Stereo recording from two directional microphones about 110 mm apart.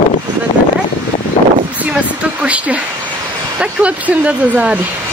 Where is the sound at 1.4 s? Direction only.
60° left (ahead or behind).